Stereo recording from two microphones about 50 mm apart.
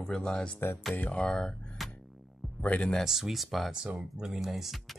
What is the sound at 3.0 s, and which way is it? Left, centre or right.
Speech, centre.